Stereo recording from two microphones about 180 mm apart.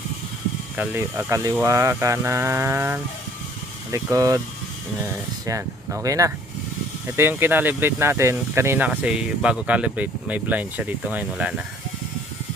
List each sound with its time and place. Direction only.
0.7 s speech: 10° right (ahead or behind)